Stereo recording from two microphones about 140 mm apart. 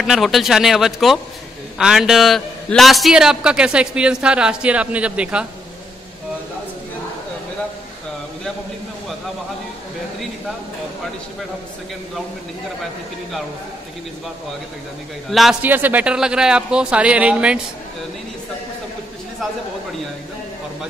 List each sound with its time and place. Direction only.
0.0 s a man's voice: centre (ahead or behind)
15.2 s speech: centre (ahead or behind)
15.6 s a man's voice: 15° right (ahead or behind)